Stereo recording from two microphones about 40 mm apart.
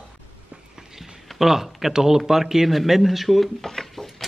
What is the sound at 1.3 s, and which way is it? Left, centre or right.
Speech, centre.